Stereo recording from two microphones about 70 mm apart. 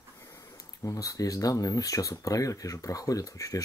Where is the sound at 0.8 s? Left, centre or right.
Left.